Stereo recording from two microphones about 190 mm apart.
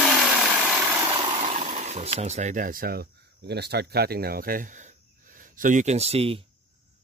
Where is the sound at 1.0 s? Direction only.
25° right (ahead or behind).